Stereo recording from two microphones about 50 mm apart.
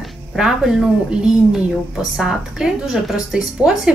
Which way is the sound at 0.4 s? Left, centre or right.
Centre.